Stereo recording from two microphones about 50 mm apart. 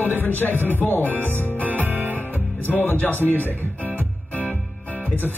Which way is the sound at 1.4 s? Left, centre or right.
Right.